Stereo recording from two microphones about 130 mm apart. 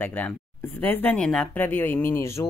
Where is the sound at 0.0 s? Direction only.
15° left (ahead or behind).